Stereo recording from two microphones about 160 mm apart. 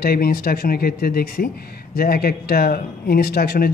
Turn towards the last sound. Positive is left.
turn(degrees=75)  # may be behind; listen again after turning